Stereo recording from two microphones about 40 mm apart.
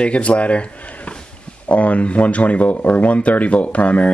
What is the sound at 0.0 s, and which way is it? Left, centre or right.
Speech, left.